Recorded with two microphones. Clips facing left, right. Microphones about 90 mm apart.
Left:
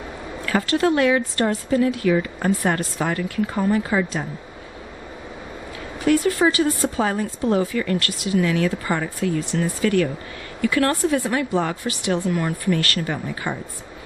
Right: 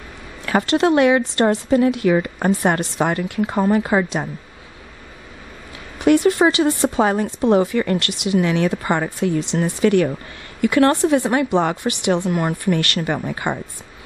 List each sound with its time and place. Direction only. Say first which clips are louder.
0.5 s a woman's voice: right 3 dB; 20° right (ahead or behind)
6.0 s a woman's voice: right 4 dB; 20° right (ahead or behind)